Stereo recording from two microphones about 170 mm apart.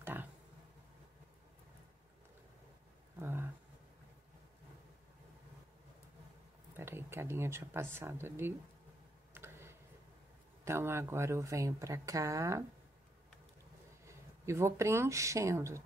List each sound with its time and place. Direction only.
0.0 s a sound: 10° right (ahead or behind)
3.2 s a sound: 15° right (ahead or behind)
6.8 s speech: 15° right (ahead or behind)
9.3 s tick: 15° right (ahead or behind)
10.6 s speech: 15° right (ahead or behind)
14.0 s speech: 15° right (ahead or behind)